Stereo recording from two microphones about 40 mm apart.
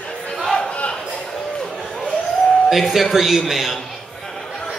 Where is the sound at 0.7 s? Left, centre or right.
Left.